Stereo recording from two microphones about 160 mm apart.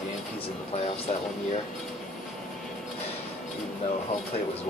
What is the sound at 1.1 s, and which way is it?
Speech, 50° left (ahead or behind).